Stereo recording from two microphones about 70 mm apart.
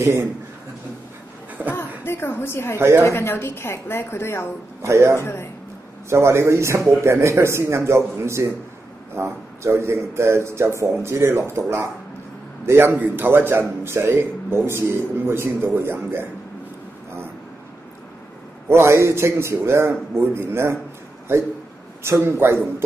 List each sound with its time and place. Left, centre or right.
0.0 s speech: right
1.7 s a sound: left
3.0 s speech: left
4.8 s speech: right
5.2 s speech: left
6.0 s a man's voice: right
18.7 s a man's voice: right
22.2 s a man's voice: right